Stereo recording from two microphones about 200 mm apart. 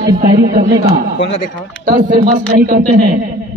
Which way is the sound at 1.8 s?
45° right (ahead or behind).